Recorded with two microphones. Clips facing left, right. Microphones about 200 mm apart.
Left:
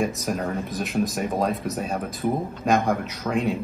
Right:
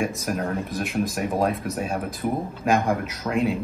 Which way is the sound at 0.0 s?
Centre (ahead or behind).